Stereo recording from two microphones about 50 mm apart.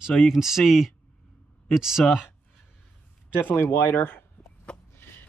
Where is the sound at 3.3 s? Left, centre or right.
Left.